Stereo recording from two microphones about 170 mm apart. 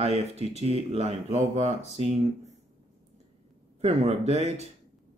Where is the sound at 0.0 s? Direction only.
40° right (ahead or behind).